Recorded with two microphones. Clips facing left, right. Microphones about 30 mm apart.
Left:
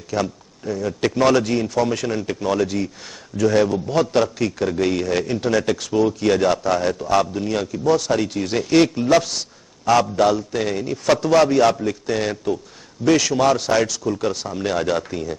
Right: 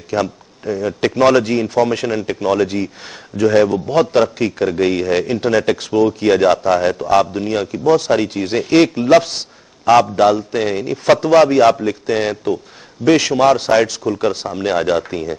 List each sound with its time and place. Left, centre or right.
0.1 s a man's voice: centre